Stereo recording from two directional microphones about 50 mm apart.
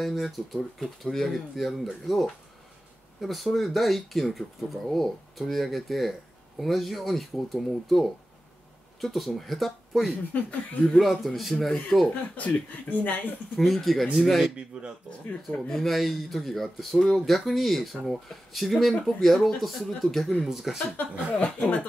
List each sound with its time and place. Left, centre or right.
0.0 s speech: centre
10.3 s speech: left
11.0 s speech: centre
12.8 s speech: left
13.6 s speech: centre
15.0 s speech: left
15.7 s speech: centre
21.3 s speech: left